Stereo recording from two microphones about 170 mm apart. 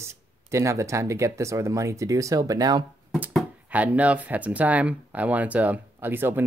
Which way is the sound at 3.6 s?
10° right (ahead or behind).